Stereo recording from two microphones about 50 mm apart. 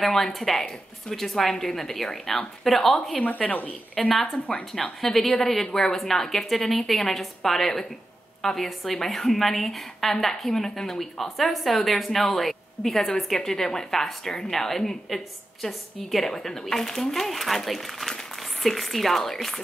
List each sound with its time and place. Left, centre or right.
0.0 s a woman's voice: centre
3.2 s a woman's voice: left
4.2 s a woman's voice: centre
5.0 s a woman's voice: centre